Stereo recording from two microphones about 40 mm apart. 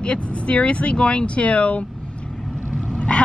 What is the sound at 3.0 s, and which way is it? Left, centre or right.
Vehicle, left.